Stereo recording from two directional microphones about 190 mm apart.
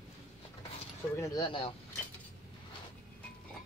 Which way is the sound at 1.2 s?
20° left (ahead or behind).